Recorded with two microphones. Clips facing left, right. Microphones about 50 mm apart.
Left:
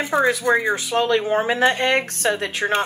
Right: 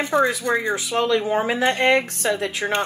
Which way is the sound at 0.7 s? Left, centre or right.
Left.